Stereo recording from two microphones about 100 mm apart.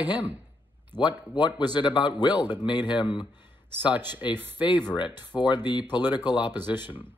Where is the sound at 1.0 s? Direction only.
50° left (ahead or behind).